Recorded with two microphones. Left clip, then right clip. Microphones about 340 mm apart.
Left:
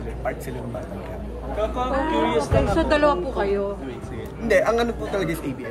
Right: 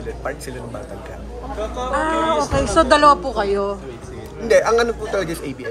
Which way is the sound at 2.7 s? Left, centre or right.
Centre.